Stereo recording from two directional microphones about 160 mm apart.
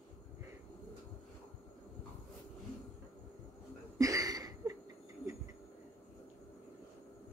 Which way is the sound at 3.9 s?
20° right (ahead or behind).